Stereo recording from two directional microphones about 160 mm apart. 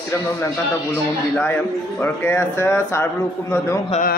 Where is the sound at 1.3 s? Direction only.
15° left (ahead or behind).